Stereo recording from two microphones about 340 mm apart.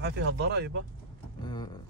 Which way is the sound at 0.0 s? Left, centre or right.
Right.